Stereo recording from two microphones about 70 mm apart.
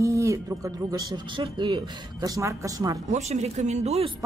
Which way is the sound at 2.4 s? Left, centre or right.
Right.